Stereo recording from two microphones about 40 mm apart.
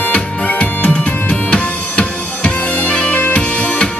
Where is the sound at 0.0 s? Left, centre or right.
Left.